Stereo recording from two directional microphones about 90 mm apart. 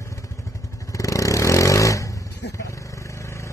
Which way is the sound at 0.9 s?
40° left (ahead or behind).